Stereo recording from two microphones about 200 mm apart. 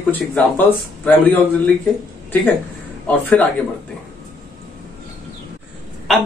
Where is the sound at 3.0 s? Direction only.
5° left (ahead or behind).